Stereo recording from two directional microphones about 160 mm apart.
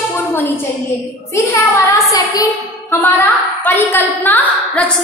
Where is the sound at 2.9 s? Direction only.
15° left (ahead or behind).